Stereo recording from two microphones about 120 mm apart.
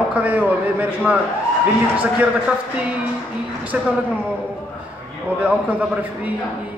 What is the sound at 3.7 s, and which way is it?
Speech, 10° right (ahead or behind).